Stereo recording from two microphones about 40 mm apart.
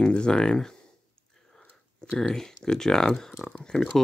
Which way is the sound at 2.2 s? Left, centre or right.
Centre.